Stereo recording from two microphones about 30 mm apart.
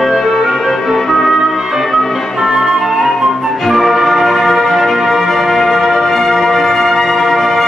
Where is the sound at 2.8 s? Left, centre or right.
Centre.